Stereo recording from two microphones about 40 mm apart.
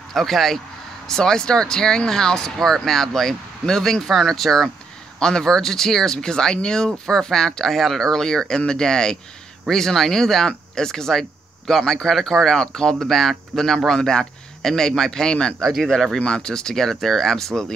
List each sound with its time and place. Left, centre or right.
0.1 s speech: centre
13.8 s a man's voice: centre
16.3 s speech: centre